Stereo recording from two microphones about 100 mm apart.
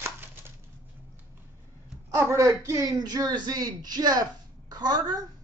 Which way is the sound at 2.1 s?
30° right (ahead or behind).